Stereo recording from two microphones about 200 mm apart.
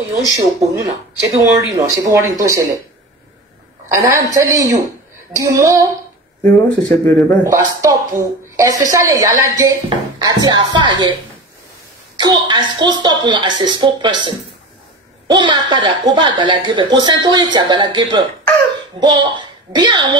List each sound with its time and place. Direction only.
1.2 s speech: 15° right (ahead or behind)
3.9 s speech: 15° right (ahead or behind)
6.4 s speech: 5° left (ahead or behind)
7.4 s speech: 15° right (ahead or behind)
12.2 s a woman's voice: 20° right (ahead or behind)